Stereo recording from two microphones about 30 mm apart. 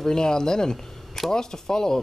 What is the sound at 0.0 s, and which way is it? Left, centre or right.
Speech, left.